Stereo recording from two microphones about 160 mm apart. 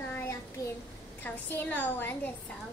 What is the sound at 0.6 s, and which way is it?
A child's voice, 20° left (ahead or behind).